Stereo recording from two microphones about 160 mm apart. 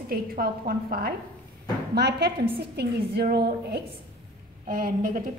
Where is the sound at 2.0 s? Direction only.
90° right.